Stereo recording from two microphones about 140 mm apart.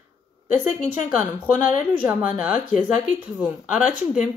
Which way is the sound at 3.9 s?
60° left (ahead or behind).